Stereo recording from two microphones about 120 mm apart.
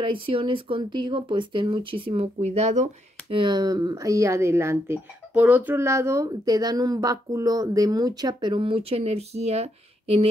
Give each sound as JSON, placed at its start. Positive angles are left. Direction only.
{"t": 0.0, "sound": "speech", "side_deg": -45}
{"t": 3.3, "sound": "speech", "side_deg": -45}